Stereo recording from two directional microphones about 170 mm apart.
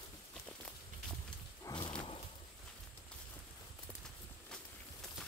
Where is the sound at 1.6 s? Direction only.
25° left (ahead or behind).